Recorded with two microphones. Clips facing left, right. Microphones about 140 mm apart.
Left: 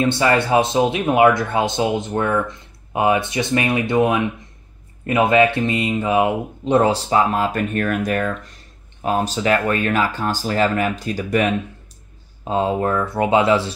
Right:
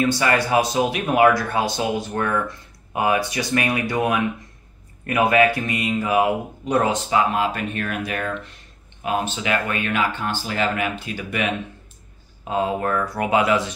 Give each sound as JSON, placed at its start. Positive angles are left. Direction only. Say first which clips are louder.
{"t": 0.0, "sound": "speech", "louder": "left 3 dB", "side_deg": 25}
{"t": 12.4, "sound": "speech", "louder": "left 3 dB", "side_deg": 30}